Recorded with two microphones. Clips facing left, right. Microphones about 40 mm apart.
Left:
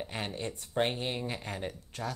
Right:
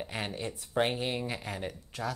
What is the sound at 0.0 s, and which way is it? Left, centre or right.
Speech, centre.